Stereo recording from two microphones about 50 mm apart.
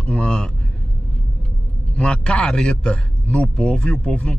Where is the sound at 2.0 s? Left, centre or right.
Centre.